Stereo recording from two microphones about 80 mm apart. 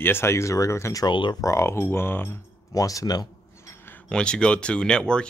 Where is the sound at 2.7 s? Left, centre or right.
Left.